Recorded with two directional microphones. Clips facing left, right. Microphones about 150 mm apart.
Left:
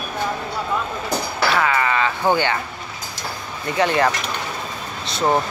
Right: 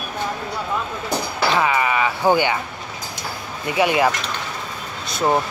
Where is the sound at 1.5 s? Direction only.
20° right (ahead or behind).